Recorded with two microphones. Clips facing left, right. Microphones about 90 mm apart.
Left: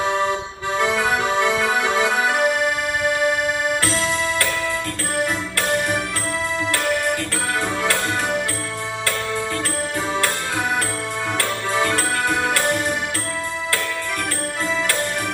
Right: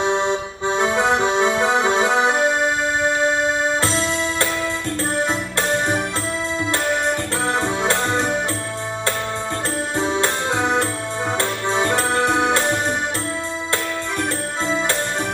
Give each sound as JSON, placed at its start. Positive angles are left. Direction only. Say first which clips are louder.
{"t": 0.0, "sound": "accordion", "louder": "right 1 dB", "side_deg": -25}
{"t": 3.0, "sound": "music", "louder": "even", "side_deg": -25}
{"t": 7.6, "sound": "music", "louder": "right 2 dB", "side_deg": -25}
{"t": 9.9, "sound": "music", "louder": "right 3 dB", "side_deg": -25}